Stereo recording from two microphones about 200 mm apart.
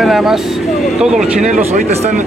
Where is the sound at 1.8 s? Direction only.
40° right (ahead or behind).